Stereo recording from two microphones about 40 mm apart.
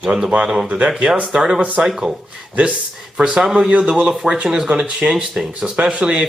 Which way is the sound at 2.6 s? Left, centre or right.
Right.